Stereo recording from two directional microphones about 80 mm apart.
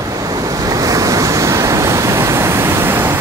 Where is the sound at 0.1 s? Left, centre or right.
Right.